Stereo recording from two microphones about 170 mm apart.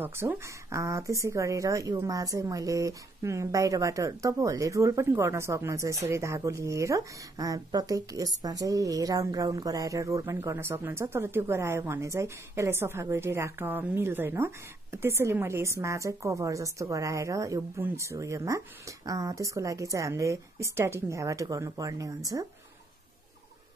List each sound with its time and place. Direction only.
0.0 s a woman's voice: 15° right (ahead or behind)